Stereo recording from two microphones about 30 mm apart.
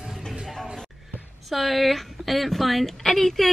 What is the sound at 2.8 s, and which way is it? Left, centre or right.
Speech, centre.